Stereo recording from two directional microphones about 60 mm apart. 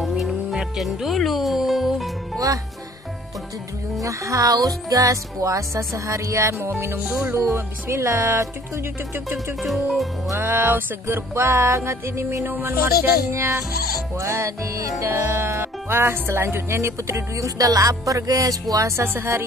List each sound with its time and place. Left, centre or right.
0.3 s music: centre
2.3 s music: right
4.0 s speech: right
7.3 s music: right
9.1 s speech: right
9.6 s speech: centre
10.3 s music: right
12.5 s speech: right
13.3 s music: right
14.1 s speech: right
15.4 s music: right
17.6 s music: right